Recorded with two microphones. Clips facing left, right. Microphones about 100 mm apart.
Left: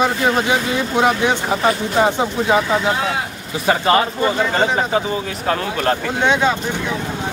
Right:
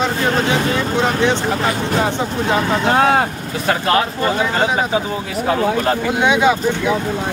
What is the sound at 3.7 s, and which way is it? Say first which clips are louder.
A man's voice: left 1 dB; centre (ahead or behind).